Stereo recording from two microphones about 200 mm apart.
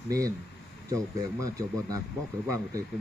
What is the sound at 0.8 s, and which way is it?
Speech, 15° right (ahead or behind).